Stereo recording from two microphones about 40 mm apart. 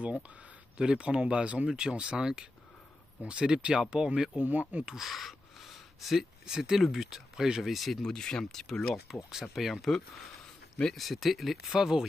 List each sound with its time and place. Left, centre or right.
0.7 s speech: right
4.4 s speech: right
5.0 s a sound: centre
6.4 s speech: centre
7.6 s speech: centre
8.0 s speech: centre
9.3 s speech: centre
11.0 s speech: centre